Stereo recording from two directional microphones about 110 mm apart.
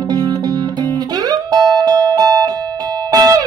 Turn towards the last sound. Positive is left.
turn(degrees=-35)  # may be behind; listen again after turning